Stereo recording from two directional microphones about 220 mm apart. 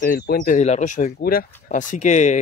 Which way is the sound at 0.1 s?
40° left (ahead or behind).